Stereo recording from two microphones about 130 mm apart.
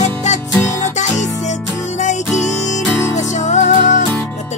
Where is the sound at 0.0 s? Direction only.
65° left (ahead or behind).